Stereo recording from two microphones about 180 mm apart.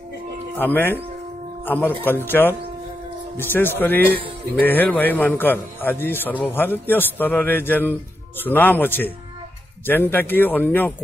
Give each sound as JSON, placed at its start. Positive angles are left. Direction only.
{"t": 0.6, "sound": "a man's voice", "side_deg": 10}